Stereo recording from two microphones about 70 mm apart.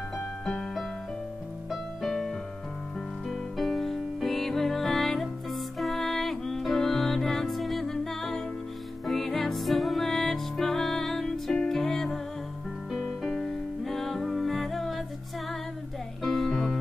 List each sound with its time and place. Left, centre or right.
0.5 s music: centre
16.2 s music: centre